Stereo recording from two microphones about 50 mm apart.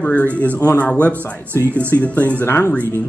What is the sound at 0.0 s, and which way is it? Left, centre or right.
Speech, left.